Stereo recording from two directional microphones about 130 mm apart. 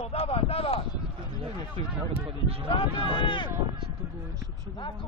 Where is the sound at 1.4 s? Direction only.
45° right (ahead or behind).